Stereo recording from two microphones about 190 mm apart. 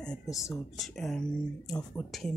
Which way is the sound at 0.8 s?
Centre (ahead or behind).